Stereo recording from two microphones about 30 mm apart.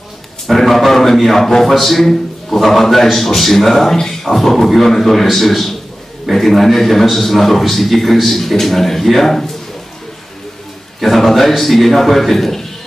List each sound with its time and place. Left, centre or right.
0.5 s a man's voice: centre
11.0 s a man's voice: centre